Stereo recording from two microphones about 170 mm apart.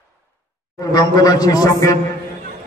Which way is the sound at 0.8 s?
20° left (ahead or behind).